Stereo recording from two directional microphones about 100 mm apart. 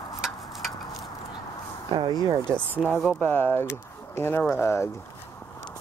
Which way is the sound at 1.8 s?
50° right (ahead or behind).